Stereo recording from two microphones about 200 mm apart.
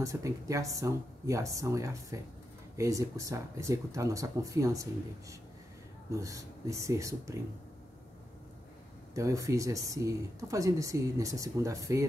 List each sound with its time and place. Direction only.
0.0 s speech: 15° right (ahead or behind)
6.1 s speech: 15° right (ahead or behind)
9.1 s speech: 15° right (ahead or behind)